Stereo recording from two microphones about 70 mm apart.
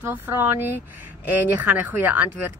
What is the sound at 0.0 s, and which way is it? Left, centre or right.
Speech, right.